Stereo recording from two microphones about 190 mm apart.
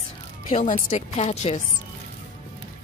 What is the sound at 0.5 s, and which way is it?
Speech, 45° left (ahead or behind).